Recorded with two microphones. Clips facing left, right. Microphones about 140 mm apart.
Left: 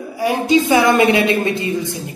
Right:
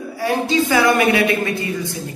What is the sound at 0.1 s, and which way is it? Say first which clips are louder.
A woman's voice: left 4 dB; 15° left (ahead or behind).